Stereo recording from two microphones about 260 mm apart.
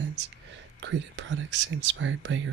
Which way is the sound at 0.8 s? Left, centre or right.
Right.